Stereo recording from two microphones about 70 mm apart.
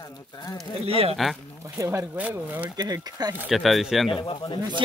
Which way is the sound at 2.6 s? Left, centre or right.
Right.